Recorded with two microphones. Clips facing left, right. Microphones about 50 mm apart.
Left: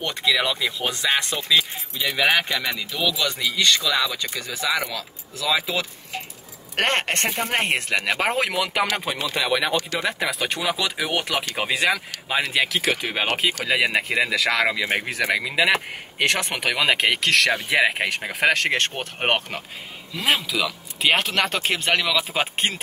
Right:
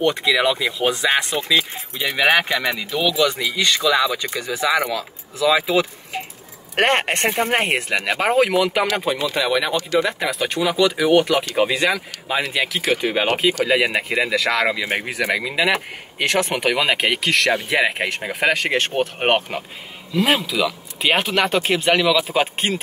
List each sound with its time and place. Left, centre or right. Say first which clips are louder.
0.0 s speech: right 5 dB; centre